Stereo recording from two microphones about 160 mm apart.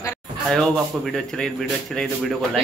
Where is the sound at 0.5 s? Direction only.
Centre (ahead or behind).